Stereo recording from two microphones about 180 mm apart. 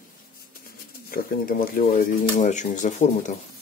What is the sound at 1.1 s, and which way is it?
Speech, 55° left (ahead or behind).